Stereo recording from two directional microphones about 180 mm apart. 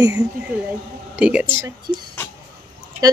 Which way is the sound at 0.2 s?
5° right (ahead or behind).